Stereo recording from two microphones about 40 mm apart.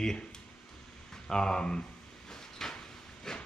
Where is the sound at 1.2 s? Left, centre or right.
Centre.